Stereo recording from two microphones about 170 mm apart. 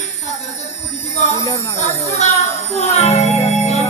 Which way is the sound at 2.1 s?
40° left (ahead or behind).